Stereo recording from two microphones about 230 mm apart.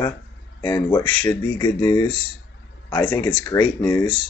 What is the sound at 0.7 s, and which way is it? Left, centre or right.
Speech, centre.